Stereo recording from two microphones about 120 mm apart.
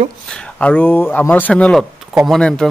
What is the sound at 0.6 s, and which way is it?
A man's voice, 15° left (ahead or behind).